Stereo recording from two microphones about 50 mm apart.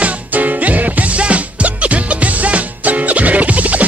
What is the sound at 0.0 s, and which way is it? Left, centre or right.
Music, right.